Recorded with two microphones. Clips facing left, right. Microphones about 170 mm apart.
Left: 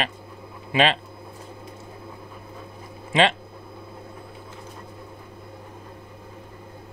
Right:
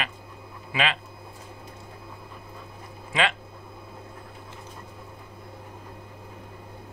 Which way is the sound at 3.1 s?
25° left (ahead or behind).